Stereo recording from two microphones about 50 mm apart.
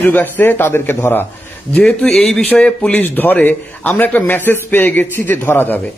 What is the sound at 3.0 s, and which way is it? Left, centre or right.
A man's voice, left.